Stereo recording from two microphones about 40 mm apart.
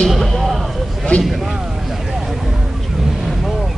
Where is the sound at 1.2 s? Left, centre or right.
Centre.